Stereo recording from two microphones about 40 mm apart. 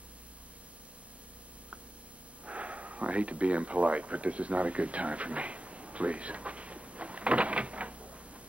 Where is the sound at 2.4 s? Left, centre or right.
Right.